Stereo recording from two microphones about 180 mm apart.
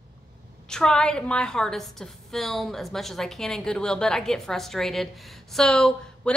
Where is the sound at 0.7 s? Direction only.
5° left (ahead or behind).